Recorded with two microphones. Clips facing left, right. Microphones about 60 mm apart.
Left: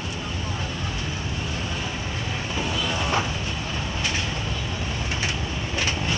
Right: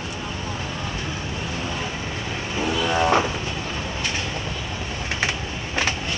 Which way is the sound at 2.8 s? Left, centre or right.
Right.